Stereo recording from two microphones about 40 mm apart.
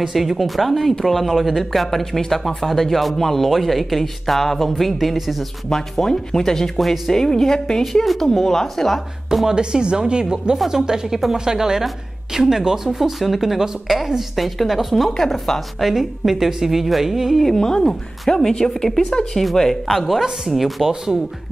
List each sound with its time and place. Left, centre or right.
0.1 s speech: centre
5.7 s speech: centre
7.8 s speech: centre
9.3 s a woman's voice: centre
9.6 s a woman's voice: right; by 15.9 s centre
15.9 s a woman's voice: centre
17.4 s speech: centre
20.9 s a woman's voice: centre